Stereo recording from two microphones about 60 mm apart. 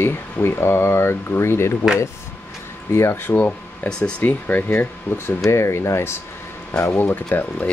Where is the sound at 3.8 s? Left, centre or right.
Centre.